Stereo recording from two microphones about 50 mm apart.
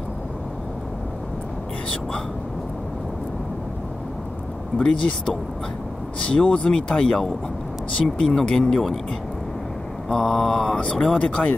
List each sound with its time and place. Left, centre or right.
4.7 s speech: centre
10.0 s speech: centre
11.1 s speech: left